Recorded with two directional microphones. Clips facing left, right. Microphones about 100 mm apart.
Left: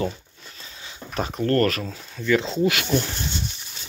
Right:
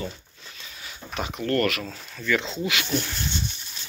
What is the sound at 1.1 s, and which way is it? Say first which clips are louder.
Speech: left 4 dB; 40° left (ahead or behind).